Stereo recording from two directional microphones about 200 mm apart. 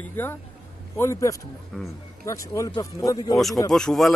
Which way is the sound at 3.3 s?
Centre (ahead or behind).